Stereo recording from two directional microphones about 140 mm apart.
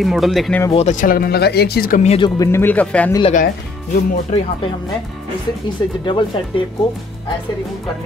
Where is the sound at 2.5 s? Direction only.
10° left (ahead or behind).